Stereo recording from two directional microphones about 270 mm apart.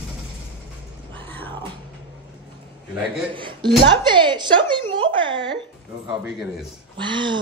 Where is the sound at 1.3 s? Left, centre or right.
Centre.